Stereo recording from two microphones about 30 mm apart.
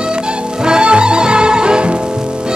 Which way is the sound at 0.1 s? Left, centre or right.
Right.